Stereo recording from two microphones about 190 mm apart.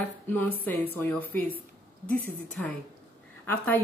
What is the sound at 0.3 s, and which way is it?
Speech, 10° left (ahead or behind).